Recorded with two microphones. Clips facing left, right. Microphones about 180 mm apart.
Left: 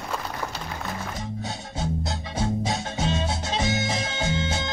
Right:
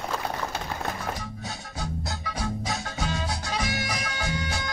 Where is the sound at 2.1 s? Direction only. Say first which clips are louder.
Left 4 dB; 25° left (ahead or behind).